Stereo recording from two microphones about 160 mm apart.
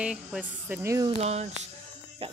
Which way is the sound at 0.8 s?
15° right (ahead or behind).